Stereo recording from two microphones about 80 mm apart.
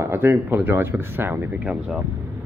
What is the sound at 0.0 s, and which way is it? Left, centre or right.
Speech, right.